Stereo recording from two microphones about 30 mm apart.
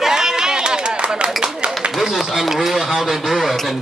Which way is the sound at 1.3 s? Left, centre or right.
Centre.